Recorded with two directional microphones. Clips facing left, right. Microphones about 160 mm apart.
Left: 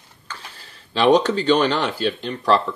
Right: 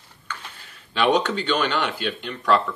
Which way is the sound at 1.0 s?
35° left (ahead or behind).